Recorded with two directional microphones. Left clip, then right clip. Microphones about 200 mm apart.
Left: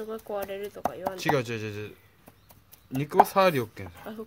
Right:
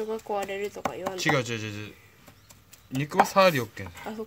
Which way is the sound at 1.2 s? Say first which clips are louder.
Right 1 dB; 45° left (ahead or behind).